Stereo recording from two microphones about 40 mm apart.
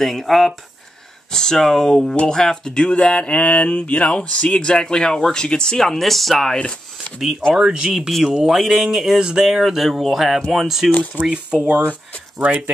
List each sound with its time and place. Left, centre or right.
0.0 s speech: centre
5.9 s speech: centre
7.2 s speech: centre
7.5 s speech: right
8.5 s speech: centre
9.6 s speech: centre
11.1 s speech: right